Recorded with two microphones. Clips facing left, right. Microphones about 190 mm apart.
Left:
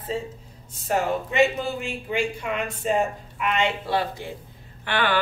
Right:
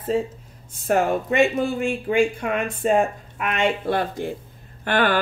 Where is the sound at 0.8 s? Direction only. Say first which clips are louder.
Right 4 dB; 55° right (ahead or behind).